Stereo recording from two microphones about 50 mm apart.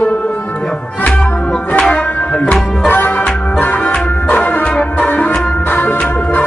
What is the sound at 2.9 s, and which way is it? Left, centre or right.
Music, left.